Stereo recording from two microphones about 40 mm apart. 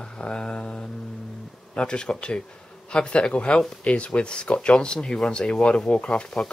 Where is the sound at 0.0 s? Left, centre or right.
Left.